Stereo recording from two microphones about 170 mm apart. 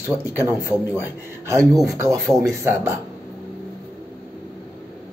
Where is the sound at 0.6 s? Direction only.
15° left (ahead or behind).